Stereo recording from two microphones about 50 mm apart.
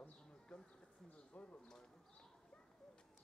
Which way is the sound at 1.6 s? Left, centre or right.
Centre.